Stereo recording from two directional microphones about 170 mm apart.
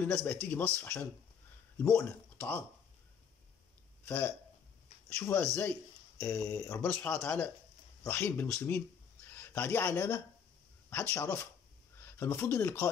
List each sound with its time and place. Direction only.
0.0 s speech: 15° left (ahead or behind)
4.0 s speech: 10° left (ahead or behind)